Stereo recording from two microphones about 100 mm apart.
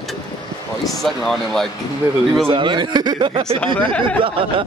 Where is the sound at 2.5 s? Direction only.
55° right (ahead or behind).